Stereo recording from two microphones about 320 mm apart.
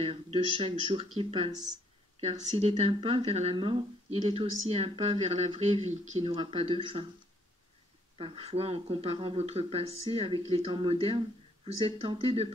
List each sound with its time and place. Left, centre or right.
0.0 s speech: centre
8.2 s speech: centre